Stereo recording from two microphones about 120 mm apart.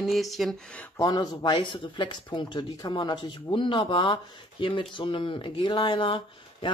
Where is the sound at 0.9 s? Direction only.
30° left (ahead or behind).